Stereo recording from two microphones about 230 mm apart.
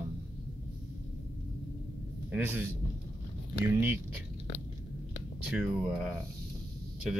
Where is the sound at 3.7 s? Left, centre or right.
Centre.